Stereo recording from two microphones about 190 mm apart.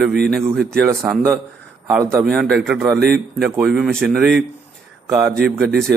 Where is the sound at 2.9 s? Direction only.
60° right (ahead or behind).